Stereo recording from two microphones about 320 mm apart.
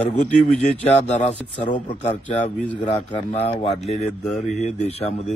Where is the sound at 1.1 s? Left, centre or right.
Centre.